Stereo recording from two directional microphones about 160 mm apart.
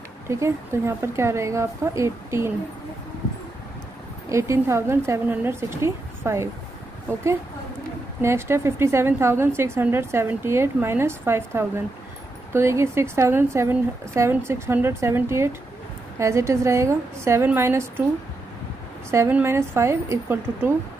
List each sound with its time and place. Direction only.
0.3 s a woman's voice: 15° right (ahead or behind)
4.3 s a woman's voice: 15° right (ahead or behind)
8.2 s a woman's voice: 15° right (ahead or behind)
19.0 s a woman's voice: 15° right (ahead or behind)